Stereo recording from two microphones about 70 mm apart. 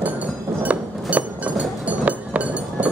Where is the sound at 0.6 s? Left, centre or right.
Right.